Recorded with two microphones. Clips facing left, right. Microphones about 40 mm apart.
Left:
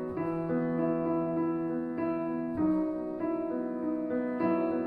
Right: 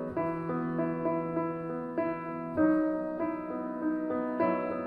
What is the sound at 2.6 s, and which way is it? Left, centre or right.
Music, centre.